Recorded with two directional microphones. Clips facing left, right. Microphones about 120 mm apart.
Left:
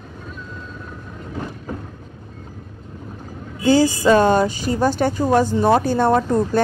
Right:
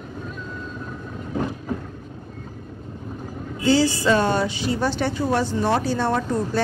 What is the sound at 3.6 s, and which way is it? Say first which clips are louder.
Speech: left 4 dB; 45° left (ahead or behind).